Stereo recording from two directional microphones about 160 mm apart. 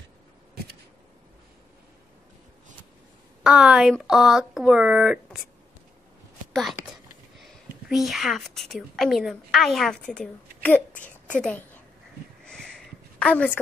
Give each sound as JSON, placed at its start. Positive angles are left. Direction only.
{"t": 3.4, "sound": "speech", "side_deg": -5}
{"t": 6.5, "sound": "a woman's voice", "side_deg": 0}
{"t": 12.4, "sound": "a sound", "side_deg": 5}